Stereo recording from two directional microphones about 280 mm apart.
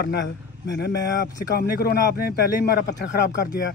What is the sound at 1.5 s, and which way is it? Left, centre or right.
Speech, left.